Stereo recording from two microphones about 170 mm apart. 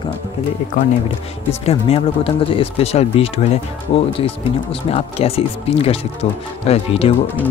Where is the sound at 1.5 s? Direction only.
35° left (ahead or behind).